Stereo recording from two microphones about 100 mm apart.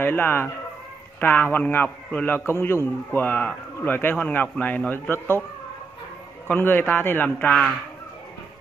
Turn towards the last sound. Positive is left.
turn(degrees=10)  # may be behind; listen again after turning